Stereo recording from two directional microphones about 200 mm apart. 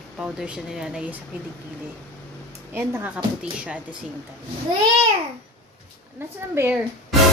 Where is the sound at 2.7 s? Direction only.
10° right (ahead or behind).